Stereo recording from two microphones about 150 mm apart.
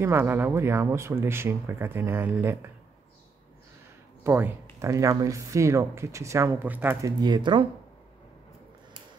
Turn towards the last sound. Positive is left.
turn(degrees=-30)  # may be behind; listen again after turning